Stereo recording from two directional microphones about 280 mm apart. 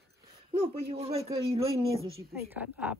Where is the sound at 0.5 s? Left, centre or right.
Right.